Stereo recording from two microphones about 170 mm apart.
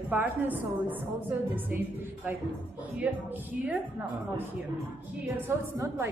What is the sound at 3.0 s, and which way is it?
Speech, 10° right (ahead or behind).